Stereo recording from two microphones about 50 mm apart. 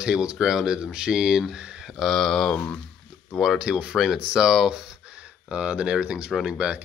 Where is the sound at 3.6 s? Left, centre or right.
Centre.